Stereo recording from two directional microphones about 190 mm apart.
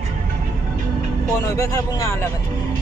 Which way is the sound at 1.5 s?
15° left (ahead or behind).